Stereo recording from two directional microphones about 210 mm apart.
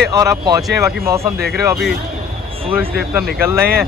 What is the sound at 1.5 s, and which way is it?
Speech, centre (ahead or behind).